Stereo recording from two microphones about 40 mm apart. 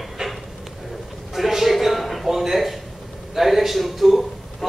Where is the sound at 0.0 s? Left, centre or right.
Centre.